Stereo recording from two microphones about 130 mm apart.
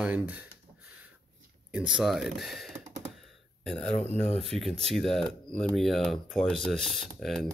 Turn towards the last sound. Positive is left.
turn(degrees=0)  # may be behind; listen again after turning